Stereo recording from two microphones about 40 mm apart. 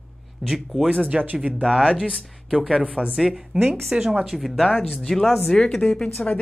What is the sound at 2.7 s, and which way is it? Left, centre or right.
Speech, right.